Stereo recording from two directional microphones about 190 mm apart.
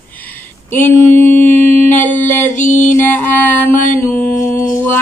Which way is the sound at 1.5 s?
35° right (ahead or behind).